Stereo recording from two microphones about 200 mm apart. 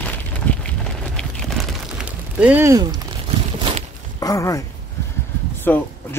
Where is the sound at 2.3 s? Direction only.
10° right (ahead or behind).